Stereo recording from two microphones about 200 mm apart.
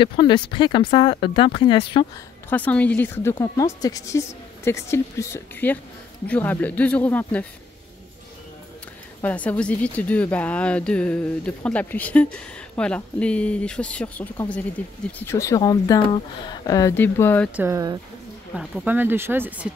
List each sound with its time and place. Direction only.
0.0 s speech: 25° left (ahead or behind)
2.5 s speech: 10° left (ahead or behind)
9.2 s speech: 10° left (ahead or behind)
17.6 s speech: 15° right (ahead or behind)